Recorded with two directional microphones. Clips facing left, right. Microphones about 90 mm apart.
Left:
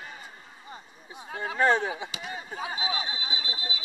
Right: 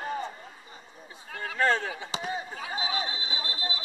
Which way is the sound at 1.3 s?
20° left (ahead or behind).